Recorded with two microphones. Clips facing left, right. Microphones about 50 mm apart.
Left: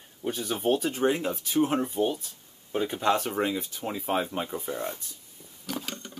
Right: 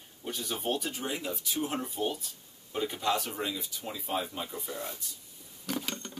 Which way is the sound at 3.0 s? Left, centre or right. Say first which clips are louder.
Left 7 dB; left.